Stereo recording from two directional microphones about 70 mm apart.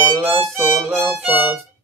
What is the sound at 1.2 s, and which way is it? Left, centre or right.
Violin, right.